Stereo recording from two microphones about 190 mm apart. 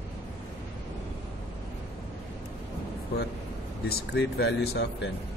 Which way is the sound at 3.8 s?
60° left (ahead or behind).